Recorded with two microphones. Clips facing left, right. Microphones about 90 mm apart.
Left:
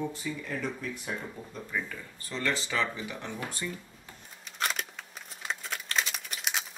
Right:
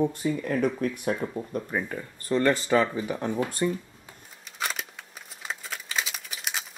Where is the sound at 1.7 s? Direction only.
45° right (ahead or behind).